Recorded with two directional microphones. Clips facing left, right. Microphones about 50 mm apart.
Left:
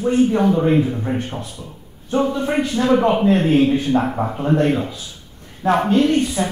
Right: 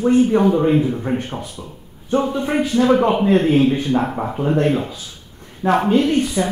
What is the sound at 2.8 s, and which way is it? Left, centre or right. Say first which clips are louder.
Speech: left 1 dB; centre.